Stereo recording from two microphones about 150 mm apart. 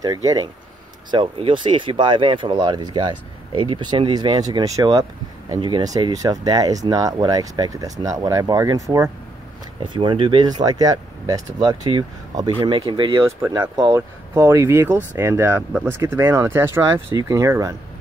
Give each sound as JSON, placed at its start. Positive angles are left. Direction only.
{"t": 0.0, "sound": "speech", "side_deg": -25}
{"t": 1.1, "sound": "speech", "side_deg": -35}
{"t": 9.8, "sound": "speech", "side_deg": -35}
{"t": 12.5, "sound": "speech", "side_deg": -35}